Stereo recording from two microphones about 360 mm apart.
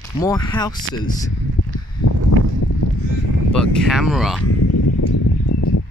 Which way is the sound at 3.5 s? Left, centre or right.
Centre.